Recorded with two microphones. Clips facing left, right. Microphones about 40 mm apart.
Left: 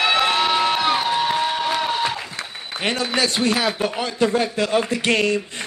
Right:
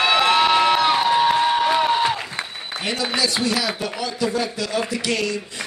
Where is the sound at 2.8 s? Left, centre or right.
Left.